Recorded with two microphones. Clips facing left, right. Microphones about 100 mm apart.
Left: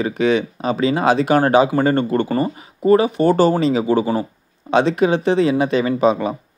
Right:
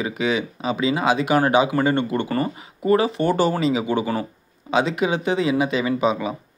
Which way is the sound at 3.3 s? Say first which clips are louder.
Left 6 dB; 40° left (ahead or behind).